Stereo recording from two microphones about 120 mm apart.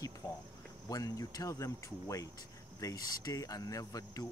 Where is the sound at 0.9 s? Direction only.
30° left (ahead or behind).